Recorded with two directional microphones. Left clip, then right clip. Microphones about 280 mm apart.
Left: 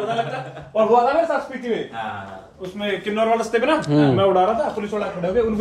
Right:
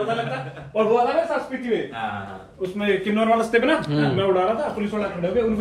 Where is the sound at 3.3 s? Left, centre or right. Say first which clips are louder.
Right 2 dB; left.